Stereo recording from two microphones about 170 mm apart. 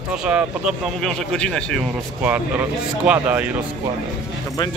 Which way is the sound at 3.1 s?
10° right (ahead or behind).